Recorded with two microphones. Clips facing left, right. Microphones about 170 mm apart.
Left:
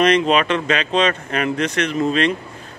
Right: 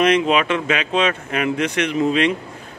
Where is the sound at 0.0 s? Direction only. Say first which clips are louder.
Left 1 dB; 5° right (ahead or behind).